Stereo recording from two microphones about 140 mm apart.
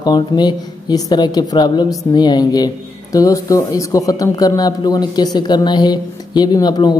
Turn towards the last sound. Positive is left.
turn(degrees=30)  # may be behind; listen again after turning